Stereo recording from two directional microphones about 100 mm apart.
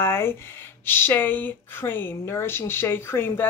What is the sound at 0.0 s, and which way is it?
A woman's voice, 25° left (ahead or behind).